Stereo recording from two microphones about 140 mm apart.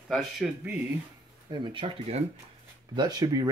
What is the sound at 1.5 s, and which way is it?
Speech, 35° right (ahead or behind).